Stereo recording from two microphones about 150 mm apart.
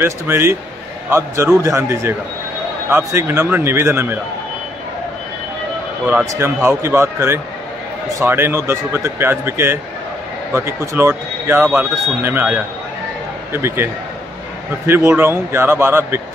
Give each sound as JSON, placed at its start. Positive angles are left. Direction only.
{"t": 0.0, "sound": "speech", "side_deg": -15}
{"t": 6.0, "sound": "speech", "side_deg": -15}
{"t": 14.9, "sound": "speech", "side_deg": -15}